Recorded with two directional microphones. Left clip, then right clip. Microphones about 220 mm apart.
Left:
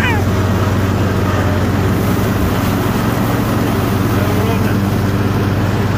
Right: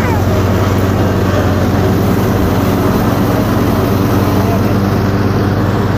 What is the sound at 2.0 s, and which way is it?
Vehicle, 35° right (ahead or behind).